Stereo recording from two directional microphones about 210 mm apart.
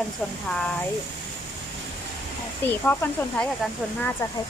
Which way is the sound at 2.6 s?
10° left (ahead or behind).